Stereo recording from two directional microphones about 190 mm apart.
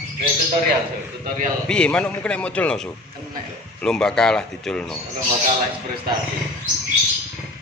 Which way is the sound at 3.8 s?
5° left (ahead or behind).